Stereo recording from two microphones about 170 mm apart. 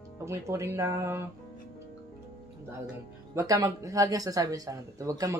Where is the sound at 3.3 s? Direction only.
20° right (ahead or behind).